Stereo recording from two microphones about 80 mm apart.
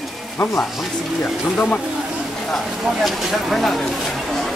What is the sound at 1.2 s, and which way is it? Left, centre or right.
Speech, centre.